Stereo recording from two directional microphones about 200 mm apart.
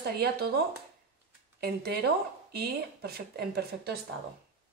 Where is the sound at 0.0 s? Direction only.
50° right (ahead or behind).